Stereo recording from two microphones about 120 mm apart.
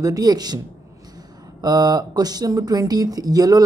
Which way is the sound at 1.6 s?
35° right (ahead or behind).